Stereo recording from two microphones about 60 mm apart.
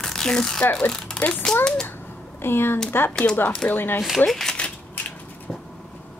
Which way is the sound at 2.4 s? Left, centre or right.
Left.